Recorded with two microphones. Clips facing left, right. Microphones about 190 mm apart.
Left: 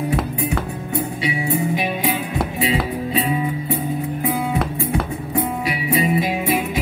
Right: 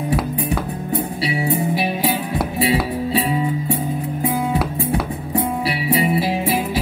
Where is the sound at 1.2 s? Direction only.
35° right (ahead or behind).